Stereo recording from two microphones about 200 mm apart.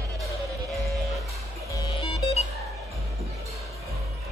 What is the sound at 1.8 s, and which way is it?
Music, 25° left (ahead or behind).